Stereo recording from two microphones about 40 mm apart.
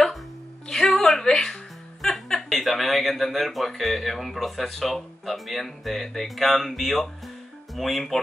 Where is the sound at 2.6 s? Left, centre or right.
Centre.